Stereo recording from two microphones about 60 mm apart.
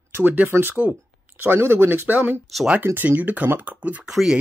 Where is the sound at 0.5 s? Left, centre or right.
Right.